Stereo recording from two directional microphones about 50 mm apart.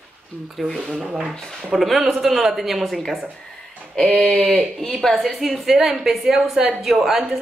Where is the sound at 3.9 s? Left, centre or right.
Centre.